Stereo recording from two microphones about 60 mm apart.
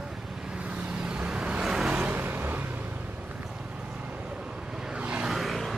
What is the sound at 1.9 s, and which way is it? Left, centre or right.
Vehicle, right.